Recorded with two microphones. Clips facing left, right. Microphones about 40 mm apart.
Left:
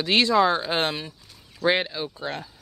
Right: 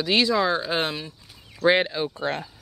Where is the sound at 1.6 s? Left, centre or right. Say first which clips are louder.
Right 3 dB; centre; by 2.4 s right.